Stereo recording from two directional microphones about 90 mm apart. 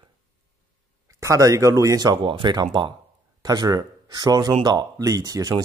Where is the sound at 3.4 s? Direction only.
45° right (ahead or behind).